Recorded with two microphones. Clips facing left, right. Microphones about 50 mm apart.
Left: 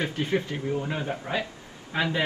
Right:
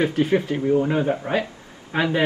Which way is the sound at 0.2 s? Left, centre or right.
Centre.